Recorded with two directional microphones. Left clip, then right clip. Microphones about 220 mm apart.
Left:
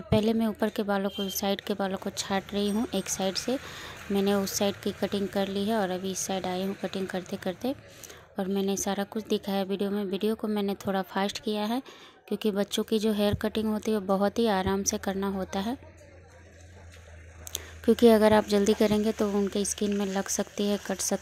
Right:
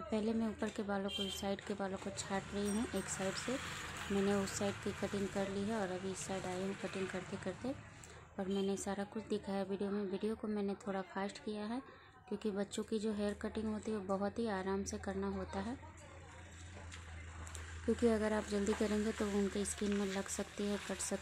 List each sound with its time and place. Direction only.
0.1 s speech: 35° left (ahead or behind)
17.5 s speech: 35° left (ahead or behind)